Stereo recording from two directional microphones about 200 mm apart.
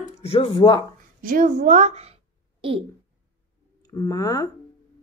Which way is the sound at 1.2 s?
40° right (ahead or behind).